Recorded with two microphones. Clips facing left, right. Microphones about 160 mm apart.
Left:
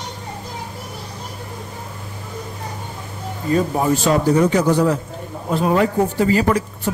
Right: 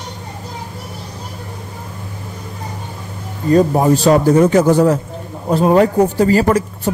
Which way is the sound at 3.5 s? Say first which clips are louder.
Right 6 dB; 40° right (ahead or behind).